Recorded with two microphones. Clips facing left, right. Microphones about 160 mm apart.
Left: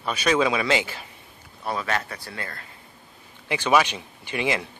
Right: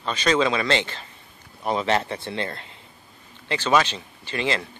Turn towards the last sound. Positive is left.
turn(degrees=10)  # may be behind; listen again after turning